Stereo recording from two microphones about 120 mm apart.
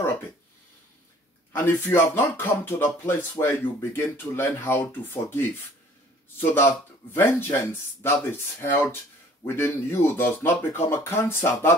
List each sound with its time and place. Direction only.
1.5 s speech: 15° left (ahead or behind)
6.4 s speech: 20° left (ahead or behind)